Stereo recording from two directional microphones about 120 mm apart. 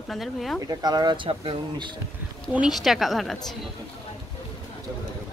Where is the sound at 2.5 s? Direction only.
5° right (ahead or behind).